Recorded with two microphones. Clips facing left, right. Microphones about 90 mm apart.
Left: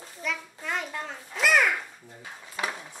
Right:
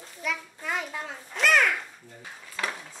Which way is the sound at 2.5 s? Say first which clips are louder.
Left 1 dB; 15° left (ahead or behind).